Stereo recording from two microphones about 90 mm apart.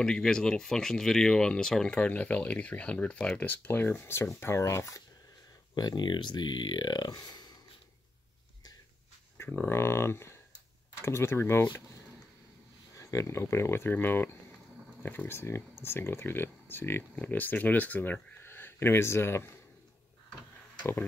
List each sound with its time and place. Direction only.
0.0 s speech: 10° left (ahead or behind); by 5.0 s 35° left (ahead or behind)
5.8 s speech: 50° left (ahead or behind)
9.4 s speech: 25° left (ahead or behind)
12.9 s speech: 35° left (ahead or behind)